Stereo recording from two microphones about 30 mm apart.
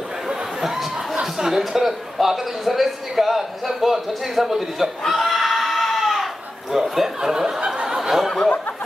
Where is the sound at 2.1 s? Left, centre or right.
Centre.